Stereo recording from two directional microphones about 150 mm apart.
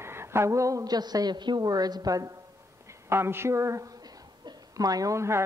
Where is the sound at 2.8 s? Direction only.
15° right (ahead or behind).